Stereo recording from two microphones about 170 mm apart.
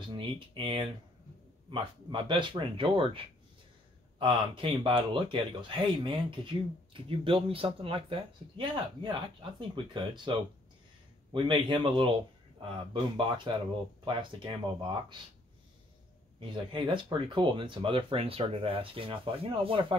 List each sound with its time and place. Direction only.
0.1 s speech: 30° right (ahead or behind)
4.2 s speech: 30° right (ahead or behind)
11.3 s speech: 30° right (ahead or behind)
16.3 s speech: 30° right (ahead or behind)